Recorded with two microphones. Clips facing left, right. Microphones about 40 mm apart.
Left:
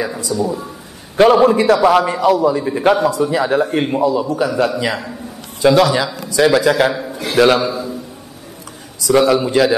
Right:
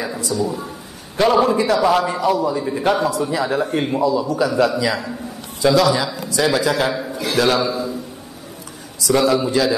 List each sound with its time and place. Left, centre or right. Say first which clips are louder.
0.3 s a man's voice: left 1 dB; left
2.6 s a man's voice: left 4 dB; left
9.0 s a man's voice: left 3 dB; left